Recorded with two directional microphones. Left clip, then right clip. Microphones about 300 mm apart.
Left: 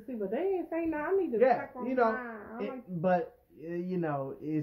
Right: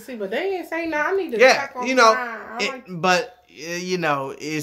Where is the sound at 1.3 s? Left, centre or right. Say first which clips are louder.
Right 13 dB; right.